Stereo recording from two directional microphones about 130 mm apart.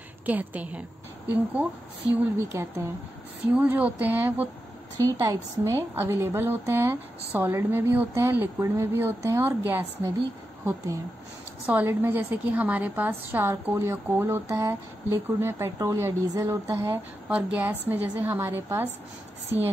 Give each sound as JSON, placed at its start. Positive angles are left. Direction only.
{"t": 0.3, "sound": "a woman's voice", "side_deg": -10}
{"t": 11.6, "sound": "a woman's voice", "side_deg": -15}